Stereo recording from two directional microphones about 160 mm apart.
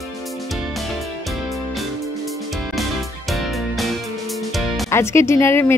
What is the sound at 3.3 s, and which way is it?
Music, centre (ahead or behind).